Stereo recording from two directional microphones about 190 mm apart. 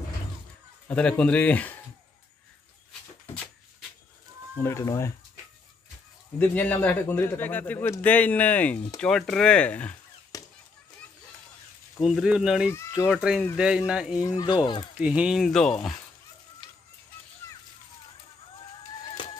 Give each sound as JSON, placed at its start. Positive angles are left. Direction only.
{"t": 0.8, "sound": "a man's voice", "side_deg": 5}
{"t": 4.6, "sound": "a man's voice", "side_deg": 15}
{"t": 6.3, "sound": "a man's voice", "side_deg": 10}
{"t": 10.3, "sound": "children playing", "side_deg": 20}
{"t": 12.0, "sound": "speech", "side_deg": 0}
{"t": 14.2, "sound": "speech", "side_deg": 20}
{"t": 15.0, "sound": "speech", "side_deg": -5}
{"t": 16.6, "sound": "music", "side_deg": 25}